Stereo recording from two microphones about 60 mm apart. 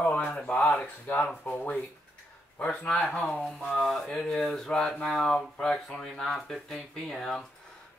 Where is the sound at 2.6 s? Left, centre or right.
Centre.